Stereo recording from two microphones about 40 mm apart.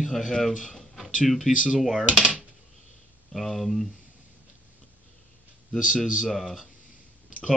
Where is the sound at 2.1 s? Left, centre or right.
Right.